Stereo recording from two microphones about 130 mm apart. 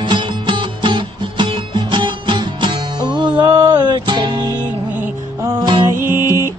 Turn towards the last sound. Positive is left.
turn(degrees=-20)  # may be behind; listen again after turning